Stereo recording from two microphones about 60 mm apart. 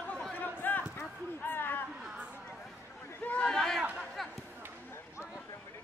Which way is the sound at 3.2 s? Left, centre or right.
Left.